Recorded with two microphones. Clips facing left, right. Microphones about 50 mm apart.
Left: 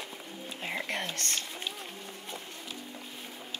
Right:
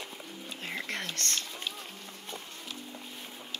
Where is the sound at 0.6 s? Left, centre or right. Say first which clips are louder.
Left 2 dB; left.